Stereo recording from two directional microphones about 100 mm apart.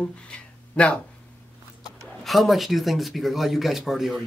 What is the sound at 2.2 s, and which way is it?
Speech, centre (ahead or behind).